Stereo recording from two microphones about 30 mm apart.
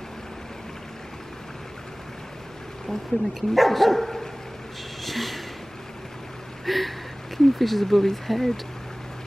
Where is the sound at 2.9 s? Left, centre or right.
Centre.